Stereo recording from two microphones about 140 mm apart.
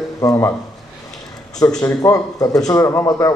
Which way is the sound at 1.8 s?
25° left (ahead or behind).